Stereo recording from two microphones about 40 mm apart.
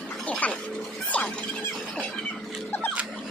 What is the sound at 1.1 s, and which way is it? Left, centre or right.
Squeal, left.